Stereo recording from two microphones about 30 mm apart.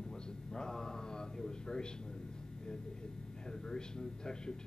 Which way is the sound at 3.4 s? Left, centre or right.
Left.